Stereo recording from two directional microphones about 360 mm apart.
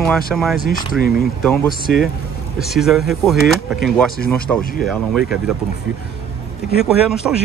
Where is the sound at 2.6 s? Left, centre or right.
Centre.